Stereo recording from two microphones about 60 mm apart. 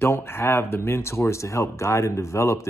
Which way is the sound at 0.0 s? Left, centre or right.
Left.